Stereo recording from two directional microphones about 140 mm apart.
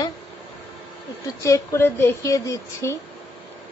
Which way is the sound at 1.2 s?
20° left (ahead or behind).